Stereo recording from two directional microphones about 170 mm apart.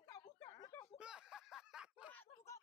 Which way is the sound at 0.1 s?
25° left (ahead or behind).